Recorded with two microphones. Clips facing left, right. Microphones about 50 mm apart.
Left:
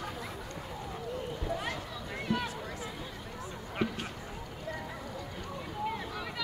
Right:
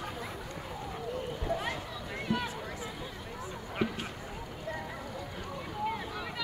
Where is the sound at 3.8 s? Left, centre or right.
Centre.